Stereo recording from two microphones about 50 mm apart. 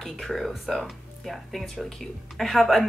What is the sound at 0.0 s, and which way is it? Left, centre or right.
A woman's voice, centre.